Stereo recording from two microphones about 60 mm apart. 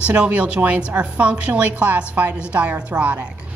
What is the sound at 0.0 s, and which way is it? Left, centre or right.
A woman's voice, right.